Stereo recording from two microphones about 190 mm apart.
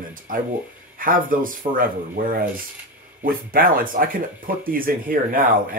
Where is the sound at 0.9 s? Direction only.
45° right (ahead or behind).